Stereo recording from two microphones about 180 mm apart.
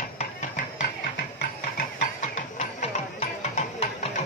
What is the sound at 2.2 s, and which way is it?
Music, 40° left (ahead or behind).